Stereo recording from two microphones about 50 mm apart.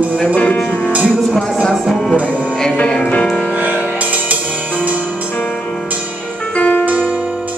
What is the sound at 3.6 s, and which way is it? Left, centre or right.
Music, right.